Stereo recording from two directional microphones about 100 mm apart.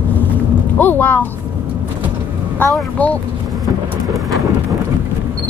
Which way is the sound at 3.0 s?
15° left (ahead or behind).